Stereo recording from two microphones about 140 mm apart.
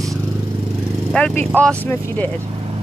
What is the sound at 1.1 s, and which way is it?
Speech, 5° left (ahead or behind).